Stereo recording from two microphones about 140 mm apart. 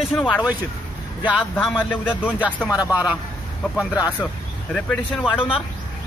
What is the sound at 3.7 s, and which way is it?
Speech, 10° right (ahead or behind).